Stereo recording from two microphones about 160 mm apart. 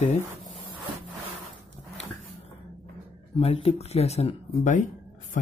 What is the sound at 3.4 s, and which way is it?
Speech, 40° left (ahead or behind).